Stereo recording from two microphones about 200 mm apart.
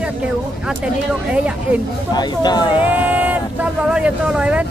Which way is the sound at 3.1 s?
10° right (ahead or behind).